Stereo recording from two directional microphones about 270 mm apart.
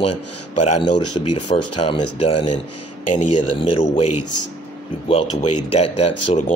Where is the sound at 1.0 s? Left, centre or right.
Left.